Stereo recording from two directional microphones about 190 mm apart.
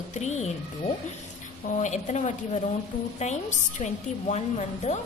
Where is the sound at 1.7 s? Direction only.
40° left (ahead or behind).